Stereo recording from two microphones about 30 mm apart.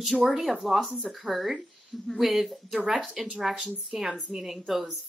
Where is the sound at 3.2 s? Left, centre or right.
Right.